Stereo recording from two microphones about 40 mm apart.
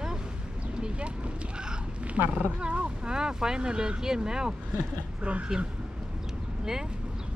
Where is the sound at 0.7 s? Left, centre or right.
Right.